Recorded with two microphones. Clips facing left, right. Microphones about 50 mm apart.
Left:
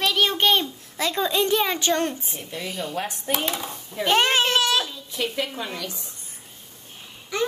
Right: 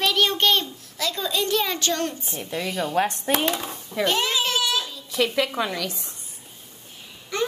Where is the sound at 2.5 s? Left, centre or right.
Right.